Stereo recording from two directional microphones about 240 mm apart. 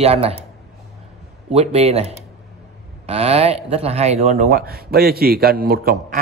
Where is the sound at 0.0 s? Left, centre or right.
Right.